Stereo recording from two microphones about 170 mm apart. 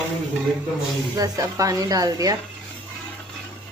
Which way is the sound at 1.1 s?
20° right (ahead or behind).